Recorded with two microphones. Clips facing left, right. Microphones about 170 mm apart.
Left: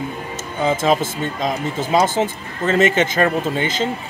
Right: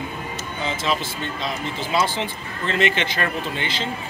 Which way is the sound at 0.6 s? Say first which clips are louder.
Left 8 dB; 45° left (ahead or behind).